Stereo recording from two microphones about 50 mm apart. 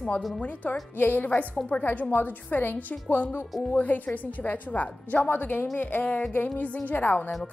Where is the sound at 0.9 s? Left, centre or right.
Left.